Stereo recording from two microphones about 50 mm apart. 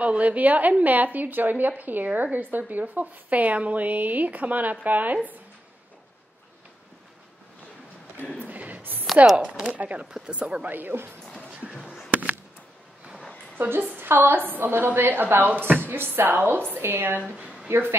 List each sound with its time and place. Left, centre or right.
0.0 s speech: right
8.5 s a sound: right
9.4 s speech: right
10.7 s speech: right
11.7 s a sound: centre
13.6 s a woman's voice: right